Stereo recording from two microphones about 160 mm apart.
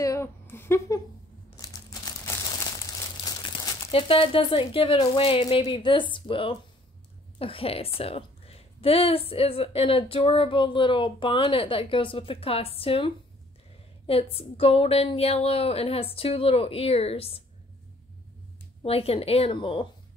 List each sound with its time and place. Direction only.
0.0 s a sound: 20° left (ahead or behind)
1.6 s crumpling: 20° left (ahead or behind)
3.9 s a woman's voice: 35° left (ahead or behind)
18.9 s a woman's voice: 35° left (ahead or behind)